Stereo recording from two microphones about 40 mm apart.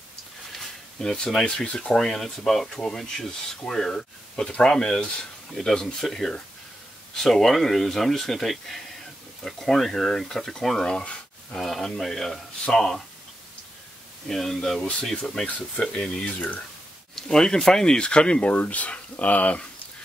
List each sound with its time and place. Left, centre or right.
0.5 s a sound: centre
1.1 s speech: centre
1.7 s speech: left
2.0 s speech: centre
2.7 s speech: centre
10.8 s speech: centre
11.5 s speech: centre
14.2 s speech: centre
15.9 s speech: left
18.5 s speech: left